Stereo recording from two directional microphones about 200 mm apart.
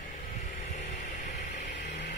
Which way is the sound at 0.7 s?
35° left (ahead or behind).